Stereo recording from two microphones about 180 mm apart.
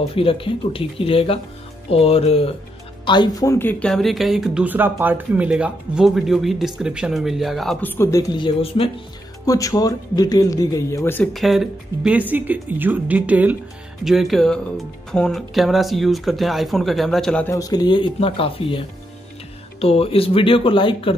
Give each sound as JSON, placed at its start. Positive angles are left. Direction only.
{"t": 0.1, "sound": "speech", "side_deg": 30}
{"t": 3.1, "sound": "speech", "side_deg": 20}
{"t": 9.5, "sound": "speech", "side_deg": 20}
{"t": 11.3, "sound": "speech", "side_deg": 0}
{"t": 17.5, "sound": "speech", "side_deg": 20}